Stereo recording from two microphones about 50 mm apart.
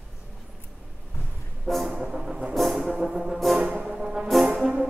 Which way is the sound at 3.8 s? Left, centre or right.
Centre.